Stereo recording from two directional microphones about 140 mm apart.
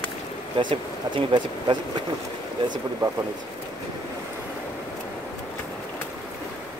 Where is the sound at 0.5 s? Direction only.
35° right (ahead or behind).